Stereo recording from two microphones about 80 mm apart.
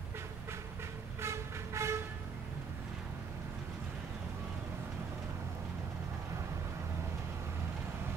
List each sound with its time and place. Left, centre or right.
1.2 s vehicle: right